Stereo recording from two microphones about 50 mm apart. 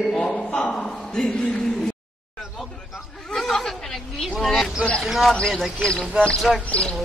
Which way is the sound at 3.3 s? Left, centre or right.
Centre.